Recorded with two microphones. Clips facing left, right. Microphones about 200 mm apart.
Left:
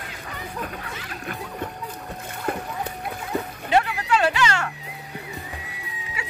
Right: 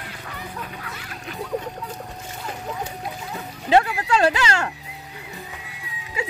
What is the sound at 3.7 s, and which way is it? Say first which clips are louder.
Speech: right 3 dB; 35° right (ahead or behind).